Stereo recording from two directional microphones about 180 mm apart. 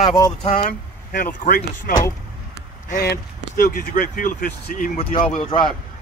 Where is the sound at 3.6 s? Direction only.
50° left (ahead or behind).